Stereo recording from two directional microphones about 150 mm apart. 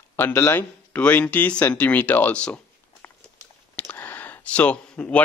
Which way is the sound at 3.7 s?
10° left (ahead or behind).